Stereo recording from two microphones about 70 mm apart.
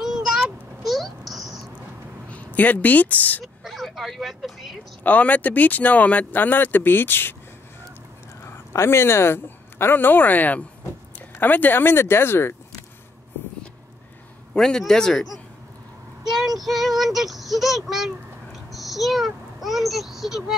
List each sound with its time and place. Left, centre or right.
0.0 s a sound: centre
2.2 s a woman's voice: left
3.6 s speech: centre
5.0 s speech: left
8.7 s speech: left
14.5 s speech: centre
16.3 s a child's voice: centre